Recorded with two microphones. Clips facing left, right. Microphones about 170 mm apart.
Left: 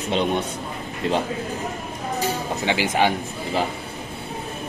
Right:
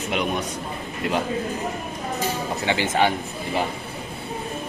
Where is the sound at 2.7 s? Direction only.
15° left (ahead or behind).